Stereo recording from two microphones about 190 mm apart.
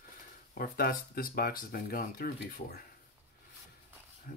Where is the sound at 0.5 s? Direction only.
50° left (ahead or behind).